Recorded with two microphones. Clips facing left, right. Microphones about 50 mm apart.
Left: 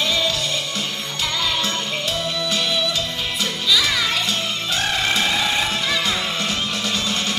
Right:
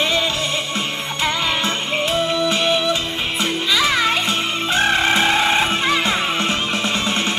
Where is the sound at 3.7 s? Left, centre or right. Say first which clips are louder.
Right 2 dB; right.